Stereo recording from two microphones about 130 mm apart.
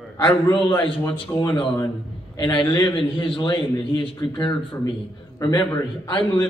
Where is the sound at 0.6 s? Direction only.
40° left (ahead or behind).